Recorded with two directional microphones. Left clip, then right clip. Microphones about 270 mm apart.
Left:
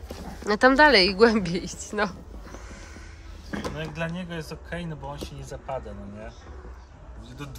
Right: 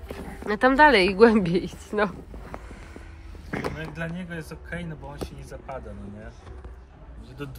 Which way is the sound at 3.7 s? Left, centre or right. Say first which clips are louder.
Left 2 dB; left.